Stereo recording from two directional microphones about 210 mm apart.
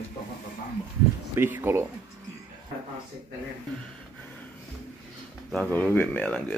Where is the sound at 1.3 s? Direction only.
10° right (ahead or behind).